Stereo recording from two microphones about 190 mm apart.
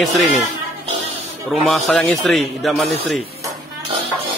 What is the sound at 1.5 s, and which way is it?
A man's voice, centre (ahead or behind).